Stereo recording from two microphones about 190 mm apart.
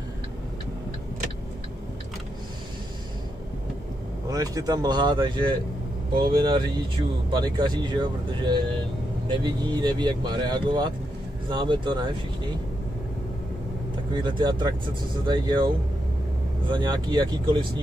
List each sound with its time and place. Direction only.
4.3 s speech: 20° right (ahead or behind)
14.1 s speech: 25° right (ahead or behind)